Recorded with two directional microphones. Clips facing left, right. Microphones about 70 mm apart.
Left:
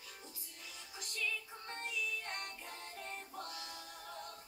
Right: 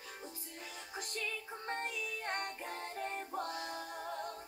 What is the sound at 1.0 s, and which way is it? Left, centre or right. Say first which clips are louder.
Music: even; right.